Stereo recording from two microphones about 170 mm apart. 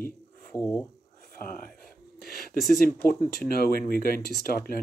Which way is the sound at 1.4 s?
55° left (ahead or behind).